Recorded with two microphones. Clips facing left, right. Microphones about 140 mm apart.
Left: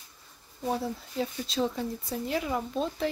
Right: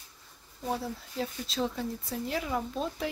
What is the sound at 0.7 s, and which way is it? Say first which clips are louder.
A woman's voice: left 3 dB; centre (ahead or behind).